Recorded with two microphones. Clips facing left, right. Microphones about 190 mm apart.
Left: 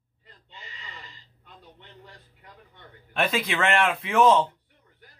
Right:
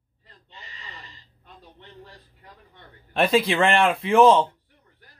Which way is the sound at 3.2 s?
30° right (ahead or behind).